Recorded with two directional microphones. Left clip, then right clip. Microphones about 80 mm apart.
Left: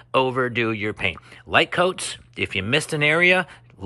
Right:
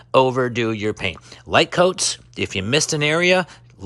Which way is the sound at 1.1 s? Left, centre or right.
Right.